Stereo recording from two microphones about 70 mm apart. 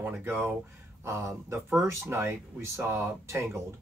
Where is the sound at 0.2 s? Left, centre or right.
Right.